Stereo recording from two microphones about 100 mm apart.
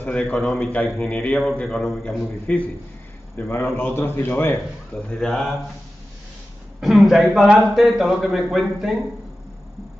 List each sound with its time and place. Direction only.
0.0 s a man's voice: 10° left (ahead or behind)
2.5 s a man's voice: 15° left (ahead or behind)
3.3 s a man's voice: 25° left (ahead or behind)
5.1 s a man's voice: centre (ahead or behind)
6.8 s a man's voice: centre (ahead or behind)